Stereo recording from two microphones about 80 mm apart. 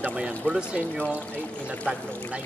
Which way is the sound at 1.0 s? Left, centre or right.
Centre.